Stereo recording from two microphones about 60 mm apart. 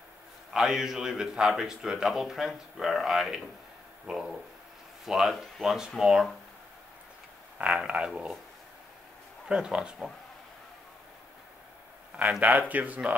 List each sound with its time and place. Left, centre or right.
0.5 s speech: centre
7.8 s speech: centre
9.5 s speech: centre
12.2 s speech: right